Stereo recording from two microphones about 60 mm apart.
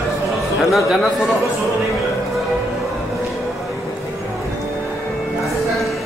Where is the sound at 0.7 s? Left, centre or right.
Centre.